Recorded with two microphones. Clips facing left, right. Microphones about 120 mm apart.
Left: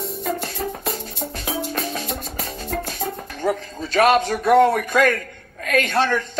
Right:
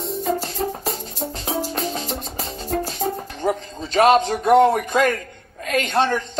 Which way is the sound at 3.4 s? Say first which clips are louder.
Even; 25° right (ahead or behind).